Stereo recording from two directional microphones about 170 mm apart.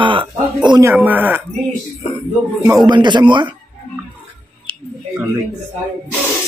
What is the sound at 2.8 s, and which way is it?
Speech, 25° right (ahead or behind).